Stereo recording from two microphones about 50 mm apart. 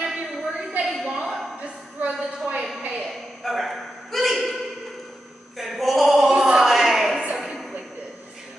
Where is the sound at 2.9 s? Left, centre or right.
Centre.